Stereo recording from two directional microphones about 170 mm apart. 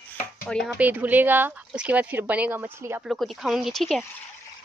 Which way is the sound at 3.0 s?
Centre (ahead or behind).